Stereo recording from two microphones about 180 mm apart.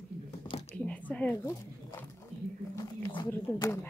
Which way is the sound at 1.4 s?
15° left (ahead or behind).